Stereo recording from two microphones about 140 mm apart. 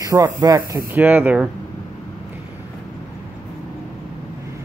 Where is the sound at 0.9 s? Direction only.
15° right (ahead or behind).